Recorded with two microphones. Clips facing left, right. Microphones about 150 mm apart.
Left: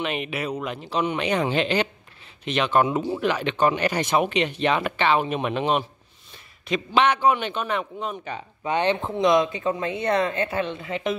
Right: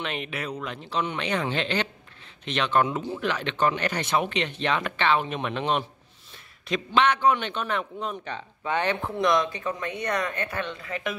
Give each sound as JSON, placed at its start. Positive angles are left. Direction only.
{"t": 0.0, "sound": "speech", "side_deg": 10}
{"t": 6.3, "sound": "a sound", "side_deg": 0}
{"t": 7.0, "sound": "speech", "side_deg": 10}
{"t": 8.6, "sound": "speech", "side_deg": 20}